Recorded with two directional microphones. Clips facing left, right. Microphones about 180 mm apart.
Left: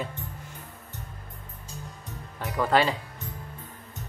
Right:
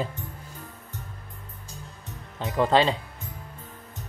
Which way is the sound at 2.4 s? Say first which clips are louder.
Right 2 dB; 25° right (ahead or behind).